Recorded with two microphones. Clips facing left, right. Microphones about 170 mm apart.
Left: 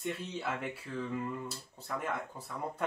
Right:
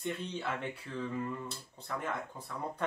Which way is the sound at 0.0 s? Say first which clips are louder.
Even; 5° left (ahead or behind).